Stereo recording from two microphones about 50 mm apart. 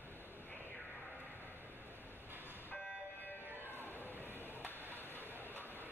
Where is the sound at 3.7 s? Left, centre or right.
Left.